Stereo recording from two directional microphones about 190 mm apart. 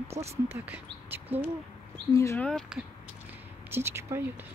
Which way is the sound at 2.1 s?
15° left (ahead or behind).